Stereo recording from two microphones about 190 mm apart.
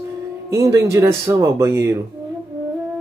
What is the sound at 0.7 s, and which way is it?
Speech, 15° right (ahead or behind).